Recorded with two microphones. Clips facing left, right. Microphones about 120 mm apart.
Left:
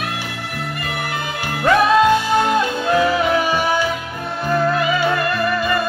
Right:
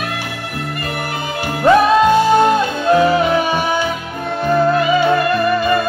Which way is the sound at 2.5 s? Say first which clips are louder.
Right 4 dB; 25° right (ahead or behind).